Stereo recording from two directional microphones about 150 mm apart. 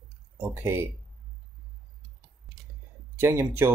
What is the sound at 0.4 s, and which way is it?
Speech, 15° right (ahead or behind).